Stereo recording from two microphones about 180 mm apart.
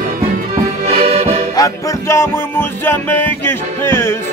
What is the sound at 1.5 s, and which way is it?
Music, 20° left (ahead or behind).